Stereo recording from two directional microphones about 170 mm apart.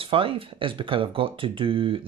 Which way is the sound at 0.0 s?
30° right (ahead or behind).